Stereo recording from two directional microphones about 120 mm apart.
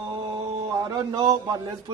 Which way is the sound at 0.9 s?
30° right (ahead or behind).